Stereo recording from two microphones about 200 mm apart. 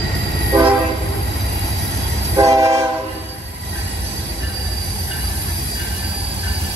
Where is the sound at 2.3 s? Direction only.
15° right (ahead or behind).